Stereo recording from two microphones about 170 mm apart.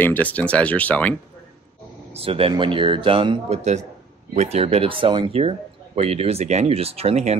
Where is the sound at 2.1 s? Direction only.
35° right (ahead or behind).